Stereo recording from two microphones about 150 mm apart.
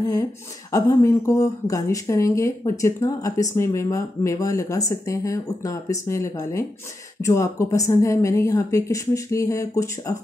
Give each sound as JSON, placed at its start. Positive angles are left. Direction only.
{"t": 0.7, "sound": "speech", "side_deg": 20}